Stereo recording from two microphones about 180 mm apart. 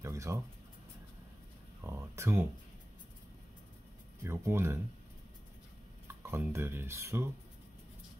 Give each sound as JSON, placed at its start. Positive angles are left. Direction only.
{"t": 0.0, "sound": "a sound", "side_deg": -15}
{"t": 1.9, "sound": "speech", "side_deg": -15}
{"t": 4.2, "sound": "speech", "side_deg": -15}
{"t": 6.2, "sound": "speech", "side_deg": -15}